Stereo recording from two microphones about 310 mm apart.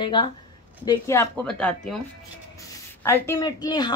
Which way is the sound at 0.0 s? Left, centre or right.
Centre.